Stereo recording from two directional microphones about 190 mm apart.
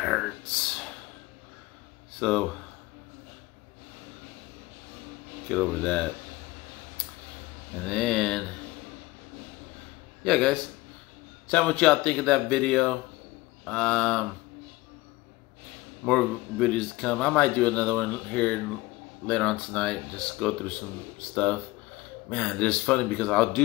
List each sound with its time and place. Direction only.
0.0 s a sound: centre (ahead or behind)
2.1 s speech: 5° left (ahead or behind)
5.5 s speech: 5° left (ahead or behind)
7.9 s speech: centre (ahead or behind)
10.2 s speech: 5° left (ahead or behind)
16.1 s speech: 5° left (ahead or behind)
22.3 s speech: 5° left (ahead or behind)